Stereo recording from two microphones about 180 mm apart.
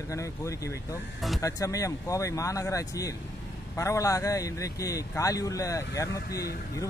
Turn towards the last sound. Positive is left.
turn(degrees=20)  # may be behind; listen again after turning